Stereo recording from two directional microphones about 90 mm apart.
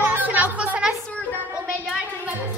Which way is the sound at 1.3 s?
20° right (ahead or behind).